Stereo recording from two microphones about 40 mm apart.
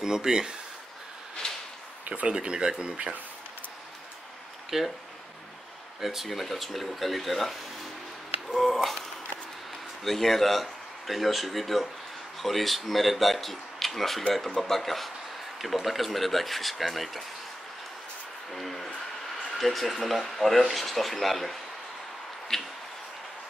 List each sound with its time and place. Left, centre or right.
0.0 s speech: centre
1.4 s a sound: centre
2.2 s speech: right
4.6 s speech: centre
5.9 s speech: centre
8.5 s a sound: centre
10.0 s speech: centre
18.5 s speech: centre
22.5 s a sound: centre